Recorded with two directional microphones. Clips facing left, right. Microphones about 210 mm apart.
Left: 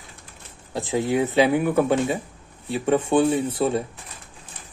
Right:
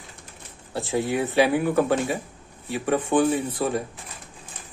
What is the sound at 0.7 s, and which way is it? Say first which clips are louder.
Speech: left 2 dB; 20° left (ahead or behind).